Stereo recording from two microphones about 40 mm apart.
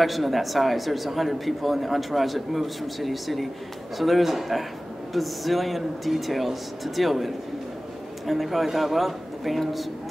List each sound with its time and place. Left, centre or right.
0.0 s speech: centre